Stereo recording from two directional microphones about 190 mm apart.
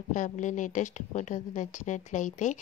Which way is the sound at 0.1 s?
40° left (ahead or behind).